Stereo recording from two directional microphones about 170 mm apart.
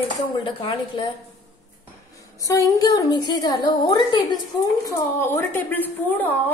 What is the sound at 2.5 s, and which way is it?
A woman's voice, 20° left (ahead or behind).